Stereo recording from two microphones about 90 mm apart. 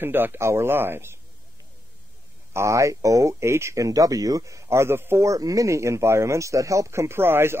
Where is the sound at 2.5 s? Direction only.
35° right (ahead or behind).